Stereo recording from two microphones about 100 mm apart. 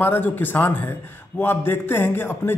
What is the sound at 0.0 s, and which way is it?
A man's voice, 20° left (ahead or behind).